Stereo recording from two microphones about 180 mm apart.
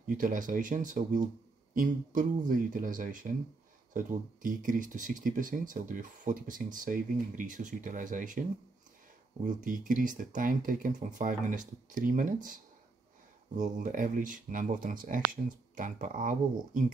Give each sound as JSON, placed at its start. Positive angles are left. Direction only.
{"t": 0.0, "sound": "speech", "side_deg": -50}
{"t": 9.4, "sound": "speech", "side_deg": -45}
{"t": 13.6, "sound": "speech", "side_deg": -45}